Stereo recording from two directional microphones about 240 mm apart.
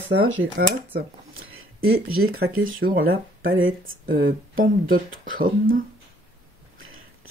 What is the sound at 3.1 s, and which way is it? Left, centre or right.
Speech, right.